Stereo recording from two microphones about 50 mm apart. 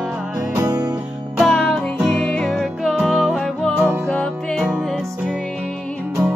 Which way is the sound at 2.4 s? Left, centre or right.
Centre.